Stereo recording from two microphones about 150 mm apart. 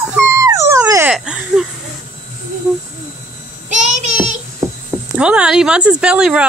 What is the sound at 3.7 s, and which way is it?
Child singing, 50° right (ahead or behind).